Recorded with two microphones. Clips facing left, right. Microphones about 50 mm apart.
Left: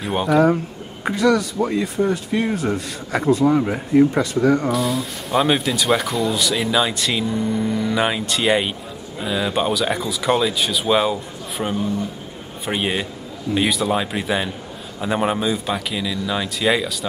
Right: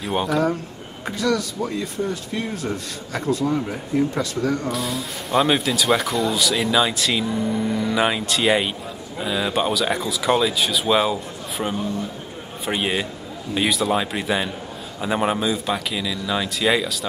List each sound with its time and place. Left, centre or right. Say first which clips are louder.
0.0 s speech: left 4 dB; centre
4.6 s speech: left 5 dB; centre